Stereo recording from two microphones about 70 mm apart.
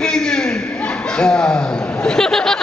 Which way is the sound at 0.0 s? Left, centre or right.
Centre.